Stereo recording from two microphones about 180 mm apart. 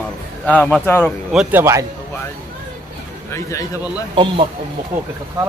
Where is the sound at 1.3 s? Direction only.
15° right (ahead or behind).